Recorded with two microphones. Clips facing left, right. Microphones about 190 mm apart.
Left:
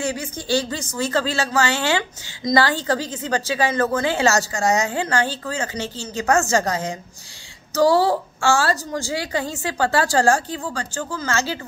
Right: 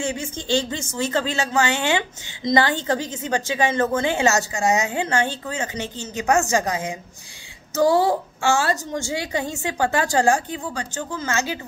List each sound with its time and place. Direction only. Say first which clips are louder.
0.0 s a woman's voice: left 1 dB; 25° right (ahead or behind)